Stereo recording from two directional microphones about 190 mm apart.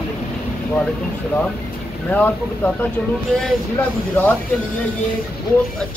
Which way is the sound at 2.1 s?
10° left (ahead or behind).